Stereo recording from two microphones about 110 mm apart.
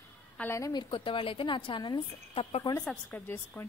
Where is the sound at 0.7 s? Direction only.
50° left (ahead or behind).